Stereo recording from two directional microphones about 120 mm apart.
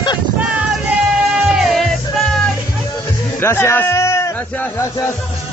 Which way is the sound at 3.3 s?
20° left (ahead or behind).